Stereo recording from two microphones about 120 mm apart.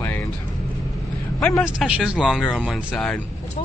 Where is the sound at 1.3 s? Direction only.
15° left (ahead or behind).